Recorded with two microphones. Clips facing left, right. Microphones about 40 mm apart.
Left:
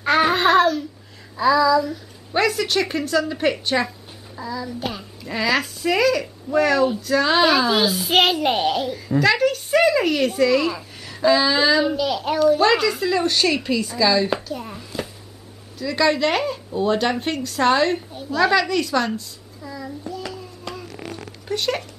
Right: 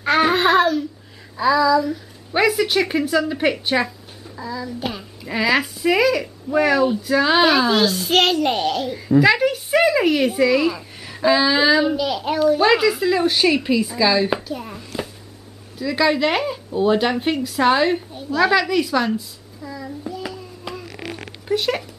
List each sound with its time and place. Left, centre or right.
0.0 s babbling: centre
1.3 s a woman's voice: centre
9.2 s speech: centre
20.8 s a sound: right
21.5 s speech: centre